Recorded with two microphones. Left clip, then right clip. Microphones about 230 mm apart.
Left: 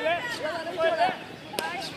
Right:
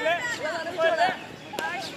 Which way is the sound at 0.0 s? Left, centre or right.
Right.